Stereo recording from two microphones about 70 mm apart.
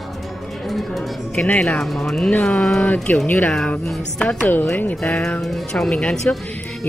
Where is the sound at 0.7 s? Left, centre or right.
Centre.